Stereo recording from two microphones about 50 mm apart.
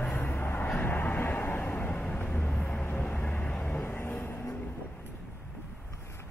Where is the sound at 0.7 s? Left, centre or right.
Left.